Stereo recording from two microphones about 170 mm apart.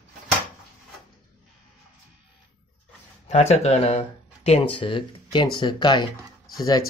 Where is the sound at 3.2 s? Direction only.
40° left (ahead or behind).